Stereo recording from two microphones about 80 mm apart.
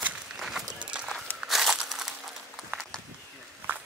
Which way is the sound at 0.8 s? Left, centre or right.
Centre.